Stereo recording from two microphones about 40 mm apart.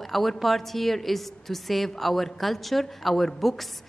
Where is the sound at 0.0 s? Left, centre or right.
Centre.